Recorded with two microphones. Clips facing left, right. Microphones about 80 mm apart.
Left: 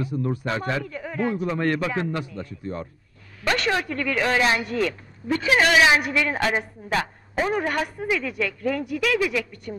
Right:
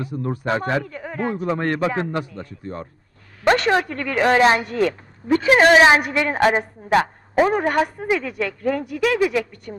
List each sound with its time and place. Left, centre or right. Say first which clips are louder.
0.0 s speech: right 1 dB; right
6.9 s a woman's voice: right 8 dB; right
7.4 s speech: right 3 dB; right